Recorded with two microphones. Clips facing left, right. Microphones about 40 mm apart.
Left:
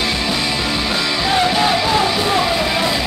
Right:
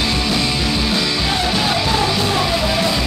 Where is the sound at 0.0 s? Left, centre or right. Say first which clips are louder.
Even; centre.